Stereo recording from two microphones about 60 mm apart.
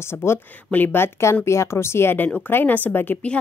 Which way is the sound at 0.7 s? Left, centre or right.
Left.